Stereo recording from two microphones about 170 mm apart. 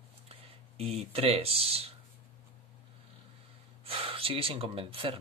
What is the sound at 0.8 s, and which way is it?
Speech, 35° right (ahead or behind).